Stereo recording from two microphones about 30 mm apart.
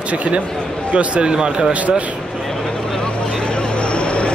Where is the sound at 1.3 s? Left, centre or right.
Right.